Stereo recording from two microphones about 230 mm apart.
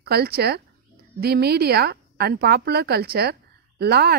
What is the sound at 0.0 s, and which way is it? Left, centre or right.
A woman's voice, right.